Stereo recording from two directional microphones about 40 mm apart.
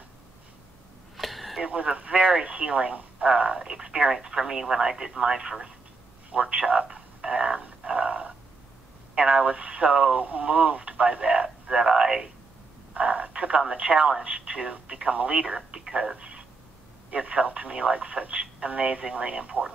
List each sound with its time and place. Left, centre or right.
1.1 s a sound: centre
1.6 s speech: right
6.3 s speech: right
11.7 s speech: centre
12.9 s telephone: right
13.6 s speech: right
17.1 s speech: right